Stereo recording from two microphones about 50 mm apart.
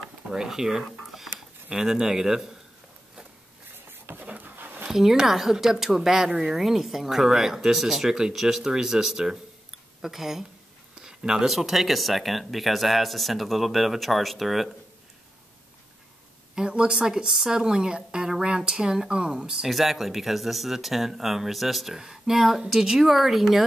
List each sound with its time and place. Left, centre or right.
0.3 s speech: centre
3.9 s a sound: right
4.8 s a sound: centre
5.1 s speech: centre
16.5 s speech: centre
19.7 s speech: centre